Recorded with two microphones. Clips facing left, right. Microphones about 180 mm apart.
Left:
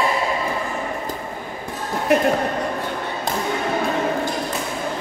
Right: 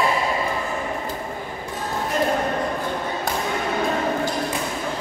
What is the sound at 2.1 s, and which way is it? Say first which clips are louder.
Speech: left 6 dB; 75° left (ahead or behind).